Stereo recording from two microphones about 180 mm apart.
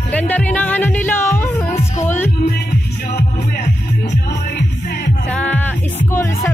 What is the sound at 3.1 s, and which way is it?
Music, 65° left (ahead or behind).